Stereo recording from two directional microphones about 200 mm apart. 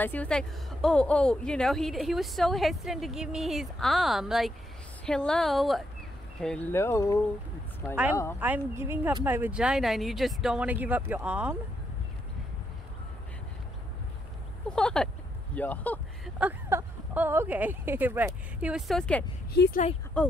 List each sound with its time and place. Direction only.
0.0 s a woman's voice: 10° left (ahead or behind)
7.9 s speech: 10° right (ahead or behind)
14.8 s a woman's voice: 5° left (ahead or behind)
16.3 s speech: 10° right (ahead or behind)
19.5 s speech: 55° left (ahead or behind)